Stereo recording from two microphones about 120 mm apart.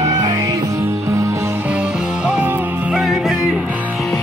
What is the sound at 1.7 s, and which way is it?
Music, 10° right (ahead or behind).